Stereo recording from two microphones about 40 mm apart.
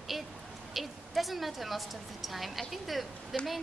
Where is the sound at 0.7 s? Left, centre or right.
Centre.